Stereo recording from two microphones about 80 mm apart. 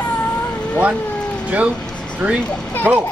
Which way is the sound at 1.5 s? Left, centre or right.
Centre.